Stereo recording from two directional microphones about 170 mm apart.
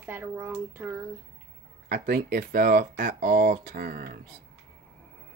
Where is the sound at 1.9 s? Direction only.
65° right (ahead or behind).